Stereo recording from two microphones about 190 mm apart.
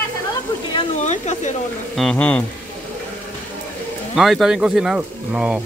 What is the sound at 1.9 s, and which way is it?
Speech, 5° left (ahead or behind).